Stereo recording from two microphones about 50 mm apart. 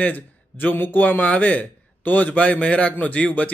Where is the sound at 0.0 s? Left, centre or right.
Left.